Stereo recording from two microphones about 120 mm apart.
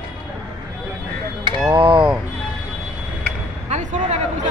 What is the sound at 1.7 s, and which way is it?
Speech, 45° right (ahead or behind).